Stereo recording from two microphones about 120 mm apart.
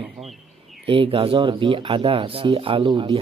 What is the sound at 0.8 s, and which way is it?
Speech, 50° right (ahead or behind).